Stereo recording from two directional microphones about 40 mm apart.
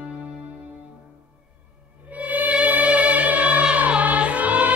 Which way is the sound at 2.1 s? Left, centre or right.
Right.